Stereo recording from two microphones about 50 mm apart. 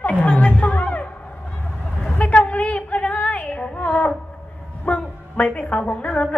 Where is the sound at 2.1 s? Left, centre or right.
Left.